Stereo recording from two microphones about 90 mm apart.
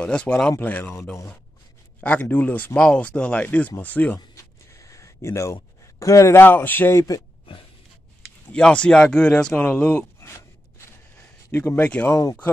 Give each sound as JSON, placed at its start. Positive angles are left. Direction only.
{"t": 0.0, "sound": "speech", "side_deg": 10}
{"t": 2.0, "sound": "speech", "side_deg": 20}
{"t": 4.7, "sound": "a sound", "side_deg": 35}
{"t": 6.4, "sound": "a man's voice", "side_deg": 20}
{"t": 8.5, "sound": "a man's voice", "side_deg": 10}
{"t": 11.5, "sound": "a man's voice", "side_deg": 25}
{"t": 11.8, "sound": "speech", "side_deg": 15}
{"t": 12.1, "sound": "speech", "side_deg": 40}